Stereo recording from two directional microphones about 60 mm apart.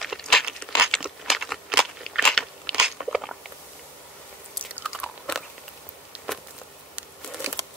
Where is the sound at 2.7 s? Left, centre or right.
Centre.